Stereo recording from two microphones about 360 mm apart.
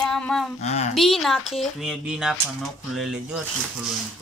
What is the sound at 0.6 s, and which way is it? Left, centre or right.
Speech, centre.